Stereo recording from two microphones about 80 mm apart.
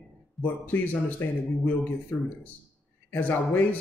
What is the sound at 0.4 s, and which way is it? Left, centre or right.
Speech, left.